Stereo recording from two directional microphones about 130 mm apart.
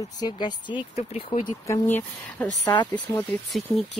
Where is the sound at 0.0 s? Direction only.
35° left (ahead or behind).